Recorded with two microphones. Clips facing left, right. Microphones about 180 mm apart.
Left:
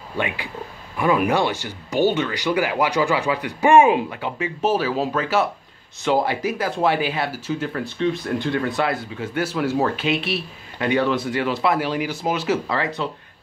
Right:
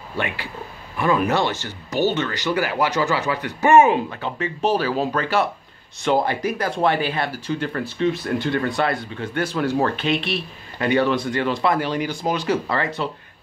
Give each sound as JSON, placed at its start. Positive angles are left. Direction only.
{"t": 0.9, "sound": "speech", "side_deg": 15}